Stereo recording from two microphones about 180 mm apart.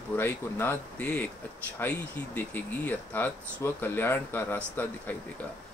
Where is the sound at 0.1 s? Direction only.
10° left (ahead or behind).